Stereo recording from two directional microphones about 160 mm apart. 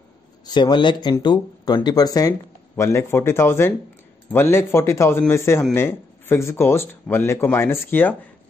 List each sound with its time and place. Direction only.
0.5 s speech: 30° left (ahead or behind); by 8.2 s 10° left (ahead or behind)